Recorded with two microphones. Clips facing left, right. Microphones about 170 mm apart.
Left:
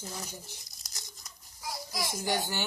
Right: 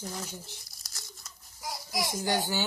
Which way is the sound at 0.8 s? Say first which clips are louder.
Right 1 dB; 20° left (ahead or behind).